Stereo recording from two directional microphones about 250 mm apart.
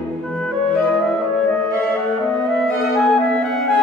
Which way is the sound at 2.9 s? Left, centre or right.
Centre.